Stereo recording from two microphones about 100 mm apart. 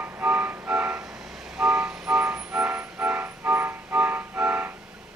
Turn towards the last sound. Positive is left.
turn(degrees=-15)  # may be behind; listen again after turning